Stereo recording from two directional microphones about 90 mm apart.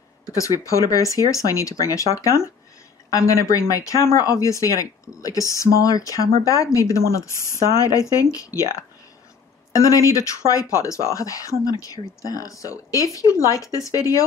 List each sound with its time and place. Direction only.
0.3 s speech: 40° left (ahead or behind)
9.7 s speech: 35° left (ahead or behind)